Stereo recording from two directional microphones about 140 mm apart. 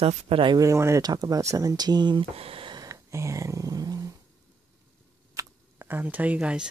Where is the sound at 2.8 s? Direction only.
20° right (ahead or behind).